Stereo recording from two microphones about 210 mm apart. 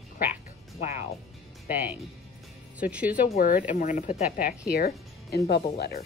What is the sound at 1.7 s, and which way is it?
Speech, 10° right (ahead or behind).